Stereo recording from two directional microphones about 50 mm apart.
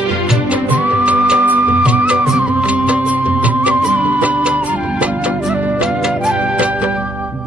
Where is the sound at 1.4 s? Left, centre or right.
Right.